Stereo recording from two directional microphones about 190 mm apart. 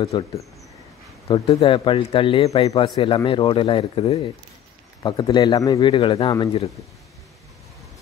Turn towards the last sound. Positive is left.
turn(degrees=30)  # may be behind; listen again after turning